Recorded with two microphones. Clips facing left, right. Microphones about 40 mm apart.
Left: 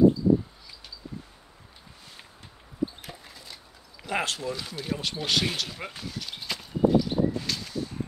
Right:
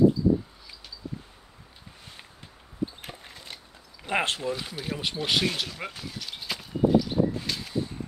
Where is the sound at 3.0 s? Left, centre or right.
Right.